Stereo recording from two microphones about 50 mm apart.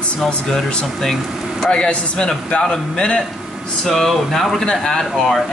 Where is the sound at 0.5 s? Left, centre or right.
Centre.